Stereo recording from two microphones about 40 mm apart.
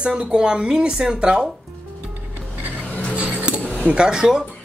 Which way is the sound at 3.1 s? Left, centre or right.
Right.